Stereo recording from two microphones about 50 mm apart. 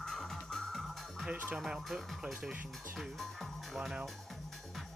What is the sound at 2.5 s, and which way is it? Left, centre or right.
Speech, right.